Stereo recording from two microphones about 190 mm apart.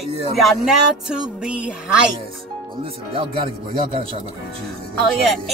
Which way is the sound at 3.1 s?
25° right (ahead or behind).